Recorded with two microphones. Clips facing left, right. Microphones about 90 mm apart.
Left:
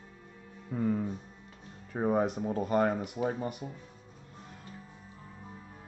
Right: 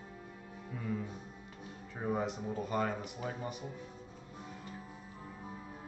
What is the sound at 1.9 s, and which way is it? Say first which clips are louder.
Speech: left 7 dB; 50° left (ahead or behind).